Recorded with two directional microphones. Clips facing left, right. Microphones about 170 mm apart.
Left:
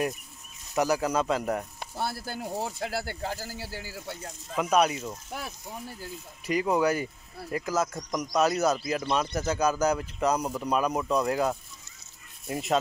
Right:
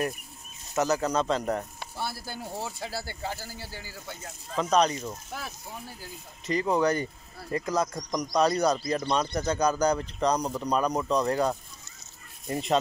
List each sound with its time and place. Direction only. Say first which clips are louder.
0.7 s speech: even; 10° left (ahead or behind)
2.0 s speech: left 3 dB; 50° left (ahead or behind)
3.7 s speech: left 3 dB; 35° left (ahead or behind)
4.6 s speech: even; 10° left (ahead or behind)